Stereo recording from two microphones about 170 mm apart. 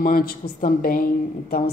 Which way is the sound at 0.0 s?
60° left (ahead or behind).